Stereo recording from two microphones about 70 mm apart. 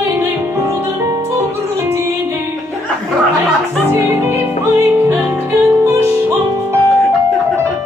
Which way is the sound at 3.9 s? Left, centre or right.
Right.